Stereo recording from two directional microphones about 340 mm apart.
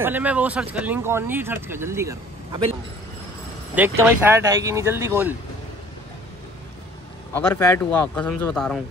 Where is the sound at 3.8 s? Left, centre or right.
Centre.